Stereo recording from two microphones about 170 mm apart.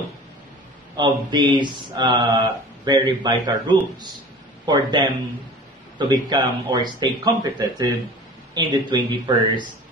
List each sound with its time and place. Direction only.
0.9 s speech: 25° right (ahead or behind)